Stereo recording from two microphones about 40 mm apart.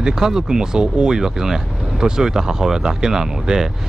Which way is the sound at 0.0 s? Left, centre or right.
Centre.